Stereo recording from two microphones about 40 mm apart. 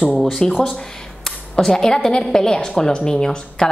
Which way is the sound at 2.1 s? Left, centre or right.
Centre.